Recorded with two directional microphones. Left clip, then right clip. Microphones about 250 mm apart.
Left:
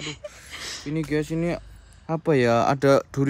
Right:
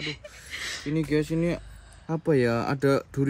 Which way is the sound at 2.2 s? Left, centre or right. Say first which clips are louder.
Left 5 dB; centre.